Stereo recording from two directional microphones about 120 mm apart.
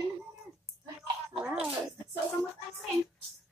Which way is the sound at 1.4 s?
10° right (ahead or behind).